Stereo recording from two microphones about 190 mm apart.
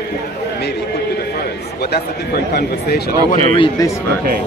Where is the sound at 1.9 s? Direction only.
55° left (ahead or behind).